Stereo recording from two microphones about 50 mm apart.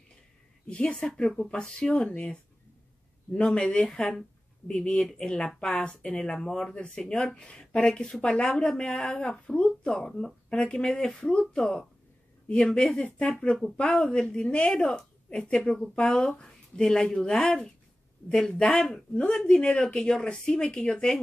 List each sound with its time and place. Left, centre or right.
0.7 s speech: left
3.3 s speech: centre